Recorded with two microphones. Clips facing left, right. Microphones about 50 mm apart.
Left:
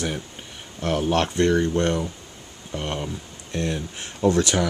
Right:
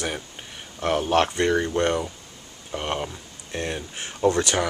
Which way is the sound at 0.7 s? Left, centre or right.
Centre.